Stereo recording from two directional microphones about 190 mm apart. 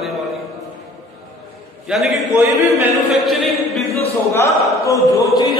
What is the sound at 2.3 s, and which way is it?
Speech, 15° right (ahead or behind).